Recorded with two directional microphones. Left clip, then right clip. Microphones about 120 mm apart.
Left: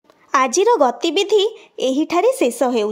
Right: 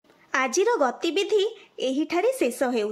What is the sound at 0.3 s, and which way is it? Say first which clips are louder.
A woman's voice: left 8 dB; 35° left (ahead or behind).